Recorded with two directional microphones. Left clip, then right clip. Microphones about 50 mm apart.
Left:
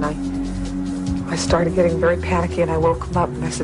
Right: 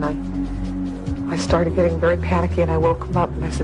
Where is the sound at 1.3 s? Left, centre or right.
Left.